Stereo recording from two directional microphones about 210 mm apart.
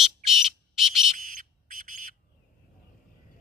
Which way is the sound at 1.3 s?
40° right (ahead or behind).